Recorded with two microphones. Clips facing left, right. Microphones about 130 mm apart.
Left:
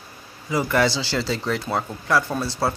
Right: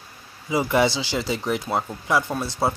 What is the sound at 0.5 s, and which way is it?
Speech, 20° right (ahead or behind).